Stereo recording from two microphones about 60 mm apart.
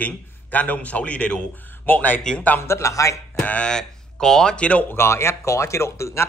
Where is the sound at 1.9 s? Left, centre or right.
Left.